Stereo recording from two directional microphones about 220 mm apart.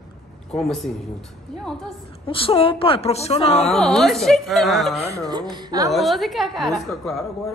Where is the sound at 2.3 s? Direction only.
25° left (ahead or behind).